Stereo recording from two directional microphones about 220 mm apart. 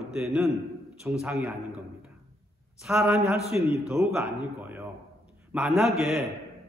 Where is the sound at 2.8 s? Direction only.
5° right (ahead or behind).